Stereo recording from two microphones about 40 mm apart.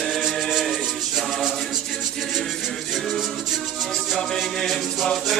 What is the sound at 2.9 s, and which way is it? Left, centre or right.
Music, centre.